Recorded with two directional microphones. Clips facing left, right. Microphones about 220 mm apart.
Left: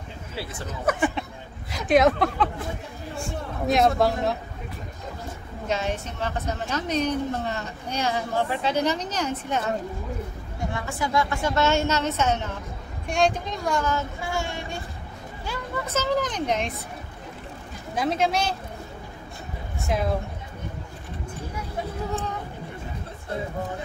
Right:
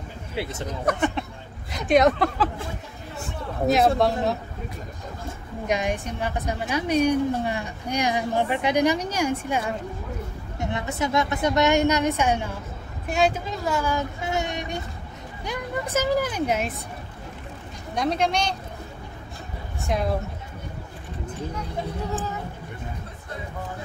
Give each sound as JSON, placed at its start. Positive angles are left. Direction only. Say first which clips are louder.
{"t": 0.4, "sound": "speech", "louder": "right 5 dB", "side_deg": -25}
{"t": 0.7, "sound": "speech", "louder": "left 1 dB", "side_deg": 5}
{"t": 5.7, "sound": "a woman's voice", "louder": "right 2 dB", "side_deg": -15}
{"t": 14.2, "sound": "speech", "louder": "right 2 dB", "side_deg": -20}
{"t": 17.9, "sound": "speech", "louder": "even", "side_deg": 0}
{"t": 19.8, "sound": "speech", "louder": "even", "side_deg": 0}